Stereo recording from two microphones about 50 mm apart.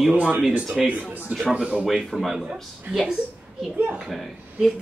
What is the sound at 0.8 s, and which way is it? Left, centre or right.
Speech, centre.